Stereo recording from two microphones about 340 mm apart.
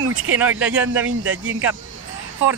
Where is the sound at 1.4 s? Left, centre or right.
Right.